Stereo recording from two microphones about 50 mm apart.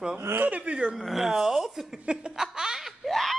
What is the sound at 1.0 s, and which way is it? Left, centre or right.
Speech, centre.